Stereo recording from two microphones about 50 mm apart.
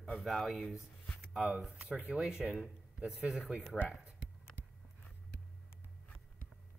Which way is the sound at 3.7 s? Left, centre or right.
Centre.